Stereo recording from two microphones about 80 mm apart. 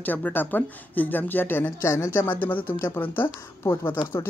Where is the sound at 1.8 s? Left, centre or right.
Left.